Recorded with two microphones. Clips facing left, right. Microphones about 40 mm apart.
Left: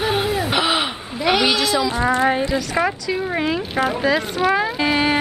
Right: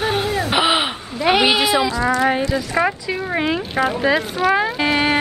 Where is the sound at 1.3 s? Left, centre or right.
Centre.